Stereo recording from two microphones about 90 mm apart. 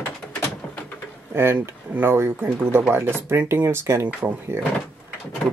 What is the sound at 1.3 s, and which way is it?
Speech, 30° right (ahead or behind).